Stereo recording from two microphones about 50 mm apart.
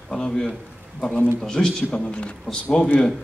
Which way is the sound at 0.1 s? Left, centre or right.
Centre.